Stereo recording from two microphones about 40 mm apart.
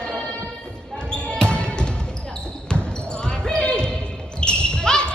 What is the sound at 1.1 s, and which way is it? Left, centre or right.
Basketball bounce, left.